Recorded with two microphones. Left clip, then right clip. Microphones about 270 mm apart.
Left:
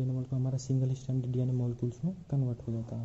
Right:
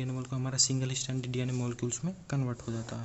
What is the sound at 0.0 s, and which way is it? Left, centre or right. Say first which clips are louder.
Speech: even; right.